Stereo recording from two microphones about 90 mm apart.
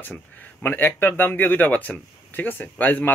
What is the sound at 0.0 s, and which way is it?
A man's voice, 20° left (ahead or behind).